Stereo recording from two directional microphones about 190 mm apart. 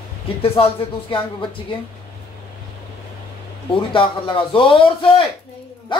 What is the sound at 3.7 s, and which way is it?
A man's voice, 25° left (ahead or behind).